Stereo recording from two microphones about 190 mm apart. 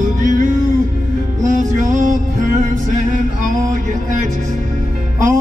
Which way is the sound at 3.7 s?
40° right (ahead or behind).